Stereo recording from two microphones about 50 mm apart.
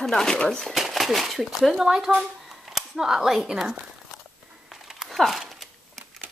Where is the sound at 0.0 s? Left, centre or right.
Centre.